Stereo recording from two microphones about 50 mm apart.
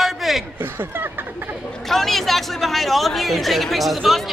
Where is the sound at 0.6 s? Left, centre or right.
Right.